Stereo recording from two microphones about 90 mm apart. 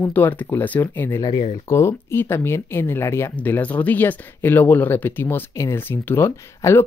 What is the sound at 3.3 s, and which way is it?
Speech, 20° left (ahead or behind).